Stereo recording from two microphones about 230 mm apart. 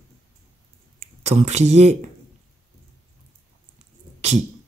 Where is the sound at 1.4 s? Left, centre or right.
Right.